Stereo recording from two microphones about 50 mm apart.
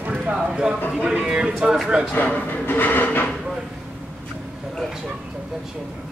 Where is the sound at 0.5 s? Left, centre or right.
Centre.